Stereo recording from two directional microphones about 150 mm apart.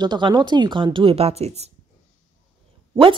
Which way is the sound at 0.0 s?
30° right (ahead or behind).